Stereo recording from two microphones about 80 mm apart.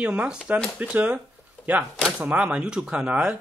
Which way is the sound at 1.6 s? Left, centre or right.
Centre.